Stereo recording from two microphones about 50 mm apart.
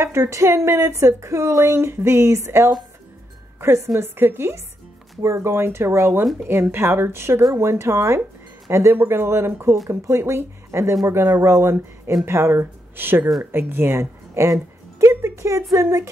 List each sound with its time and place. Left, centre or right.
0.0 s speech: right
3.6 s speech: right
4.2 s speech: right
5.2 s speech: right
8.9 s speech: right
9.8 s speech: right
12.3 s speech: right